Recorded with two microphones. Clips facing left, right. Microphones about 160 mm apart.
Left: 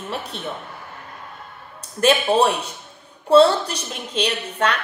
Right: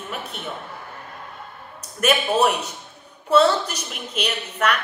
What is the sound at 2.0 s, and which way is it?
A woman's voice, 30° left (ahead or behind).